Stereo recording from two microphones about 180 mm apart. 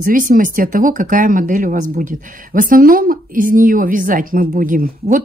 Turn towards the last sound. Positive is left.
turn(degrees=-45)  # may be behind; listen again after turning